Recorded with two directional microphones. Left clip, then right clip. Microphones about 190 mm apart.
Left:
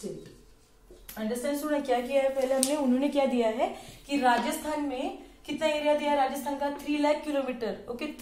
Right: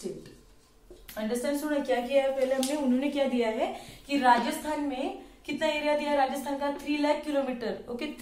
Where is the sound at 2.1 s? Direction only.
35° left (ahead or behind).